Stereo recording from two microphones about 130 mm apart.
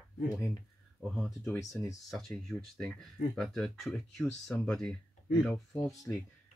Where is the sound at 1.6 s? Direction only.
25° left (ahead or behind).